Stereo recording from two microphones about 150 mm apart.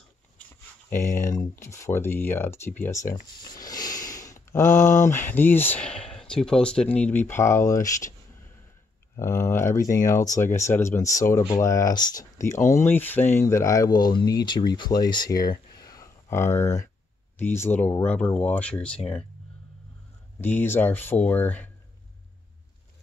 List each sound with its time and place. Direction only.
0.8 s speech: 15° left (ahead or behind)
3.4 s a sound: 25° left (ahead or behind)
5.1 s speech: 15° left (ahead or behind)
9.1 s speech: 20° left (ahead or behind)
15.7 s a sound: 25° left (ahead or behind)
17.4 s speech: 15° left (ahead or behind)
20.3 s speech: 10° left (ahead or behind)